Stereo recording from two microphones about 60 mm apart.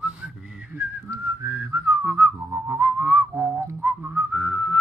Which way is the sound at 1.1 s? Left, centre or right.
Right.